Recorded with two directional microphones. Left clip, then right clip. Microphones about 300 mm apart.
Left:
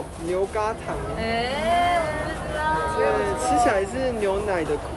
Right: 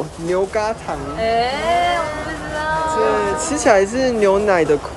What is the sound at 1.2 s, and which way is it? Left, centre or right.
Speech, right.